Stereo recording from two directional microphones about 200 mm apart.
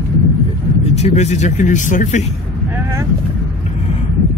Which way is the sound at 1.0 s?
35° left (ahead or behind).